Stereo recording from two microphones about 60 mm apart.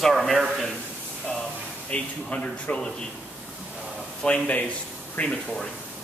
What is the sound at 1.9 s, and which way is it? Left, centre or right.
Speech, centre.